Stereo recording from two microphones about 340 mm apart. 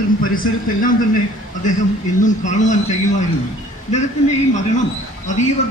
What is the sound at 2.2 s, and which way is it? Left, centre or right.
A man's voice, left.